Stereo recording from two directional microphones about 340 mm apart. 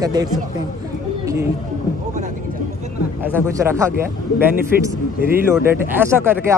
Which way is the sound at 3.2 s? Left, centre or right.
Centre.